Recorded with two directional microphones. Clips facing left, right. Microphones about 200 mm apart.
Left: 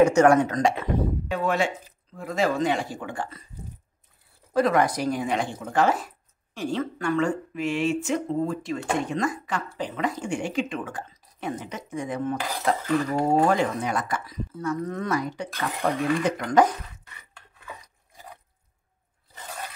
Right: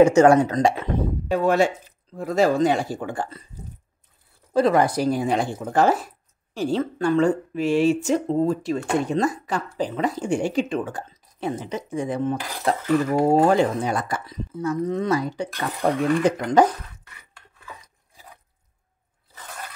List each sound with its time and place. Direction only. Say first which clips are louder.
0.0 s speech: right 3 dB; 25° right (ahead or behind)
4.6 s speech: right 3 dB; 30° right (ahead or behind)